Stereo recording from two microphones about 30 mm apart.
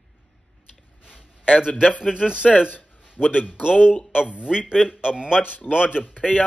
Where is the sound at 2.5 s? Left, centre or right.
Right.